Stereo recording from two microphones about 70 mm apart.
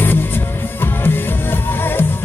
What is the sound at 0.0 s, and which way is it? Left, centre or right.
Music, left.